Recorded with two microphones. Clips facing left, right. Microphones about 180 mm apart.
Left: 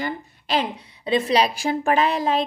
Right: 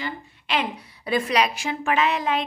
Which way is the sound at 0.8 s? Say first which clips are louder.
Left 3 dB; 25° left (ahead or behind).